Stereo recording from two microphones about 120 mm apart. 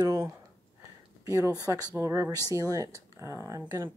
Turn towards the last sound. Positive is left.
turn(degrees=-25)  # may be behind; listen again after turning